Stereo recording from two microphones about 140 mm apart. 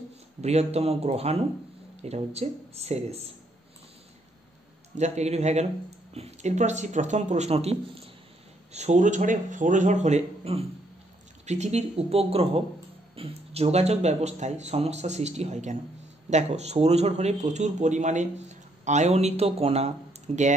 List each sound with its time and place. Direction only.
0.4 s speech: 50° right (ahead or behind)
4.9 s a man's voice: 55° right (ahead or behind)